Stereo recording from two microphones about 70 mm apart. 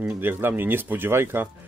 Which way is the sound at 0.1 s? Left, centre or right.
Right.